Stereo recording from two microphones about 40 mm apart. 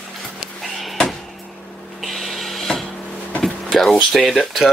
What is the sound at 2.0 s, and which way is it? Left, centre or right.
Music, centre.